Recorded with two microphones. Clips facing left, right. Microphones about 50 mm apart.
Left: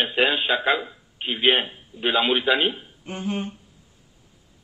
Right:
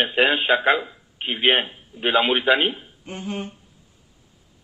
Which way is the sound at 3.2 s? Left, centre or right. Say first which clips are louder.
Left 2 dB; centre.